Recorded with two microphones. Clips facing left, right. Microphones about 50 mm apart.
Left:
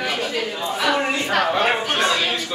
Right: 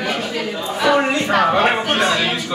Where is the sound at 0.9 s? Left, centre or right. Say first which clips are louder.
Right 6 dB; centre.